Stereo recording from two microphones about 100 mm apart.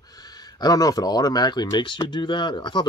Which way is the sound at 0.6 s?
40° left (ahead or behind).